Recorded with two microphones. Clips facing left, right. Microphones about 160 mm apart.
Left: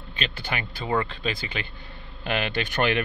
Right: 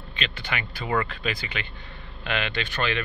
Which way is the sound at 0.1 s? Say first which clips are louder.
Left 1 dB; 35° left (ahead or behind).